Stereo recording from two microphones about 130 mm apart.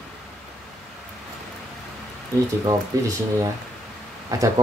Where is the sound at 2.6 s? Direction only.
25° right (ahead or behind).